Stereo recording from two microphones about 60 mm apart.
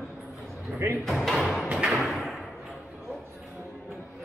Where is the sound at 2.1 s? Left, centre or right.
Centre.